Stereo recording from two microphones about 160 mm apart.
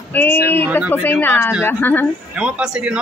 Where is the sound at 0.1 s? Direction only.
15° left (ahead or behind).